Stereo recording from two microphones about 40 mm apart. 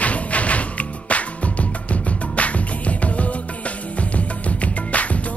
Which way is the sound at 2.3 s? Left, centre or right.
Left.